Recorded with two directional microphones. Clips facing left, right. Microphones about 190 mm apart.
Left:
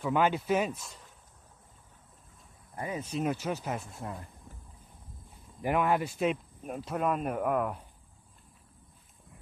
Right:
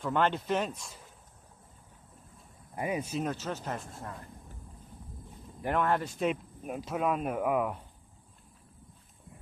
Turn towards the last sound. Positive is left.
turn(degrees=-5)  # may be behind; listen again after turning